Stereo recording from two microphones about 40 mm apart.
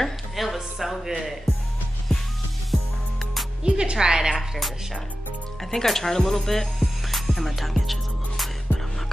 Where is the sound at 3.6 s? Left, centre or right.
Centre.